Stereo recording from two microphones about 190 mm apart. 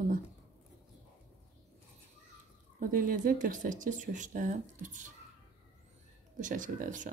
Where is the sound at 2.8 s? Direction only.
45° right (ahead or behind).